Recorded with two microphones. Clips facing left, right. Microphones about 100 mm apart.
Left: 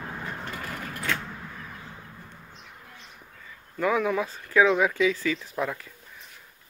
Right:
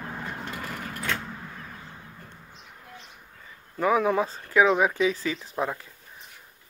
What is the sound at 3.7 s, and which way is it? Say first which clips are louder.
Speech: right 2 dB; 25° right (ahead or behind).